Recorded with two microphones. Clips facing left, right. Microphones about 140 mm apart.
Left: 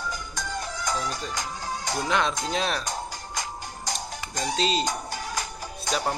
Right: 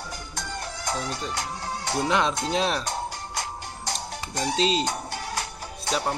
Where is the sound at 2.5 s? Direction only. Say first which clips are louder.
Right 2 dB; 25° right (ahead or behind).